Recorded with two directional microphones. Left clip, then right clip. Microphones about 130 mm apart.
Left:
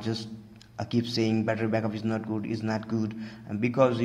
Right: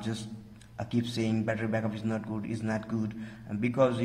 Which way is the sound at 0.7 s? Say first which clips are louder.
Left 4 dB; 15° left (ahead or behind).